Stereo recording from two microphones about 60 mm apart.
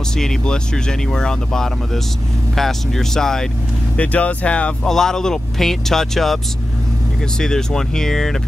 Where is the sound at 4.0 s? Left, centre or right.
Left.